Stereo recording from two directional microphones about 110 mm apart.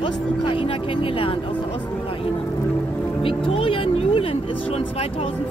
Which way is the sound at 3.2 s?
55° left (ahead or behind).